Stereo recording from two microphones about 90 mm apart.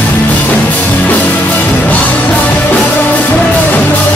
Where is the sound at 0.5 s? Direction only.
15° left (ahead or behind).